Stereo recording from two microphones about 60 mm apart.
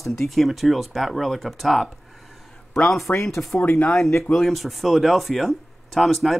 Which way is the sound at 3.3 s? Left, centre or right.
Centre.